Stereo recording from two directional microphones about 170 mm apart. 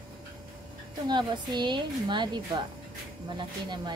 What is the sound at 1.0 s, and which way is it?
A woman's voice, 25° right (ahead or behind).